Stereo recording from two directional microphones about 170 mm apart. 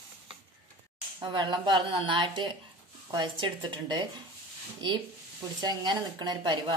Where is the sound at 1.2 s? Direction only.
25° right (ahead or behind).